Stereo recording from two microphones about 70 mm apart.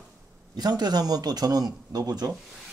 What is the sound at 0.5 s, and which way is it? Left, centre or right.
A man's voice, right.